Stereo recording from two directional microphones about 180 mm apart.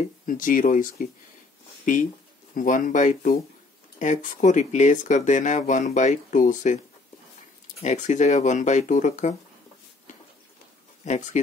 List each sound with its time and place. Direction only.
0.3 s speech: 50° left (ahead or behind)
2.5 s speech: 45° left (ahead or behind)
7.8 s speech: 40° left (ahead or behind)
11.0 s speech: 40° left (ahead or behind)